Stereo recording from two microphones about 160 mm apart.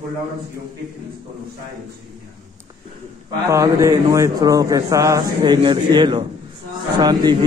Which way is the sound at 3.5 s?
20° right (ahead or behind).